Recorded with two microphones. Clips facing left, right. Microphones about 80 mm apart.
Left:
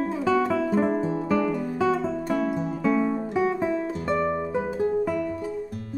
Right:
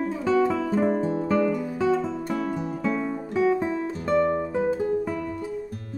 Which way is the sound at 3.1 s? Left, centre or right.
Centre.